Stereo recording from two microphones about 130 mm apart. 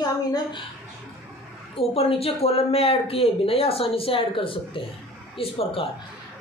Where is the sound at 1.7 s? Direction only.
50° left (ahead or behind).